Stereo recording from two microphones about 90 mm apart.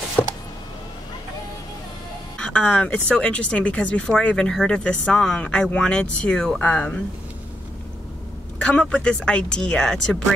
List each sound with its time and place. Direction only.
0.2 s a sound: 15° left (ahead or behind)
2.3 s speech: 10° left (ahead or behind)
8.5 s speech: 15° left (ahead or behind)